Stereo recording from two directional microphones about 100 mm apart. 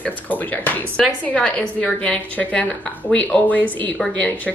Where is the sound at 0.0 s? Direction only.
15° left (ahead or behind).